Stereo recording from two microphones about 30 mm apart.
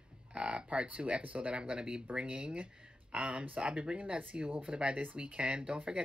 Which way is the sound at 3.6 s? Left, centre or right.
Right.